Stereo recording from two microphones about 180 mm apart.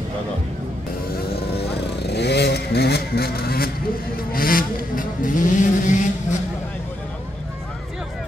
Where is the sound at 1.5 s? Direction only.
65° left (ahead or behind).